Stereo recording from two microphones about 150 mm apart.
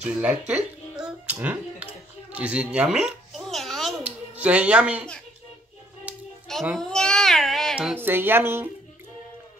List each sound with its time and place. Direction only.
0.0 s music: 10° right (ahead or behind)
2.3 s a sound: 5° right (ahead or behind)
6.8 s cat: 5° left (ahead or behind); by 8.6 s 15° right (ahead or behind)